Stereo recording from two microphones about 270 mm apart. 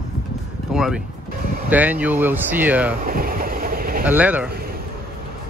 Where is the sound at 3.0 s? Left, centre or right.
Right.